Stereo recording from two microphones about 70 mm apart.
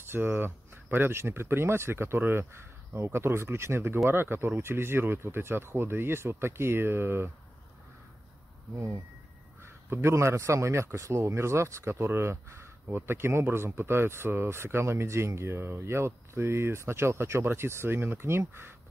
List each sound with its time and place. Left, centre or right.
0.0 s a man's voice: right
8.7 s a man's voice: right